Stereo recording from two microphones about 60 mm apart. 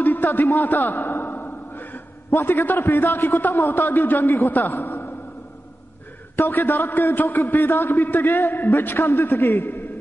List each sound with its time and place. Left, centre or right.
0.0 s a sound: left
2.3 s a man's voice: left
6.3 s a man's voice: left